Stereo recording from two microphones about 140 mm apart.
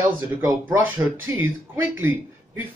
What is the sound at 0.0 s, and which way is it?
Speech, 20° right (ahead or behind).